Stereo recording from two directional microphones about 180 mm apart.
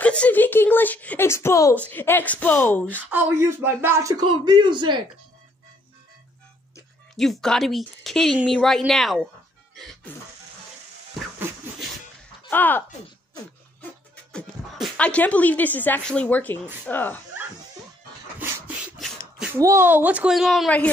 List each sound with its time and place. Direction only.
0.0 s speech: 5° left (ahead or behind)
3.1 s speech: 10° right (ahead or behind)
7.2 s speech: centre (ahead or behind)
9.8 s music: centre (ahead or behind)
12.4 s speech: 10° left (ahead or behind)
14.3 s speech: 5° left (ahead or behind)
18.9 s a sound: 5° right (ahead or behind)
19.6 s speech: 15° right (ahead or behind); by 20.9 s 5° left (ahead or behind)